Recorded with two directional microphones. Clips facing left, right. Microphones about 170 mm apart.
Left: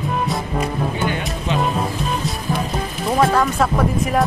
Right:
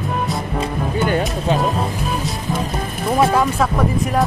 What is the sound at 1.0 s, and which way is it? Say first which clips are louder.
Speech: right 4 dB; 40° right (ahead or behind).